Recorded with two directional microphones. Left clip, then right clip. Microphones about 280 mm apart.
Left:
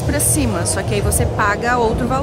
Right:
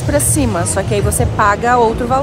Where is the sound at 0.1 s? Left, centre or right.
Centre.